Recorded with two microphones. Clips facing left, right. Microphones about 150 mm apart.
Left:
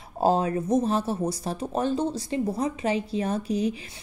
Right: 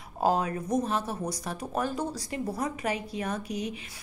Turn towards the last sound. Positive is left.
turn(degrees=30)  # may be behind; listen again after turning